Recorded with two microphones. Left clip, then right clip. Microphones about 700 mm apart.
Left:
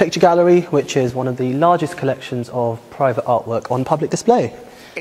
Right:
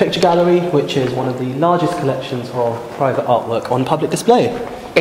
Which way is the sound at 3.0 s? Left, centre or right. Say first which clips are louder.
Right 1 dB; left.